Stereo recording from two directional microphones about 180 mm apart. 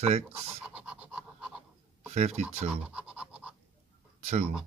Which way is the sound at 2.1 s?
40° right (ahead or behind).